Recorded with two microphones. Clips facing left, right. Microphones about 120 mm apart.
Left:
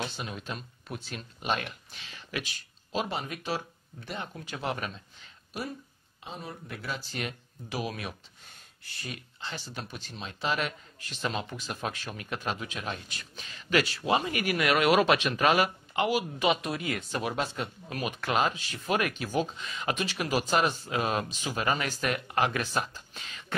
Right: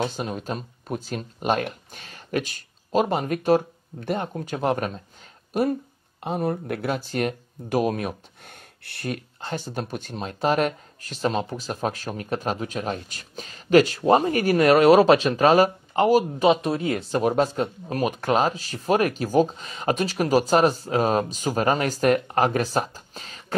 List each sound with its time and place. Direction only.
0.0 s speech: 45° right (ahead or behind)